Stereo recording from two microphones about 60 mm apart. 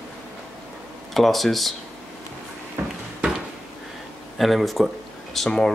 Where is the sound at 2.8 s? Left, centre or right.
Right.